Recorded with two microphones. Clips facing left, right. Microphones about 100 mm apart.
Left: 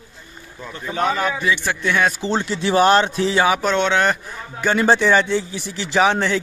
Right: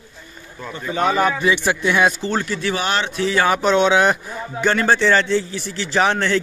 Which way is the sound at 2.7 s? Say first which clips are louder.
Left 11 dB; 40° left (ahead or behind).